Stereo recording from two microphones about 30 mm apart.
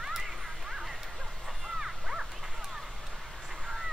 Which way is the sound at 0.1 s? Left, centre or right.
Centre.